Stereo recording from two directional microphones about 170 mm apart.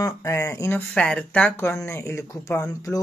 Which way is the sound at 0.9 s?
5° left (ahead or behind).